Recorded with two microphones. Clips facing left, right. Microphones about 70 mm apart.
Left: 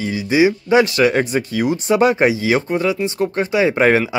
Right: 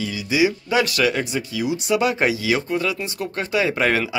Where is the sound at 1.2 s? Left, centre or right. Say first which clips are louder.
Left 6 dB; left.